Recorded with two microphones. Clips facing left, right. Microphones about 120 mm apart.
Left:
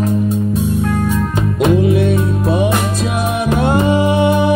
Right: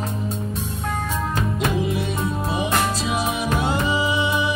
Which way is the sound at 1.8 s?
55° left (ahead or behind).